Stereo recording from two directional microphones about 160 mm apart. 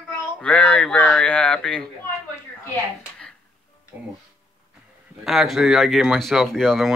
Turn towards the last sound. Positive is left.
turn(degrees=0)  # may be behind; listen again after turning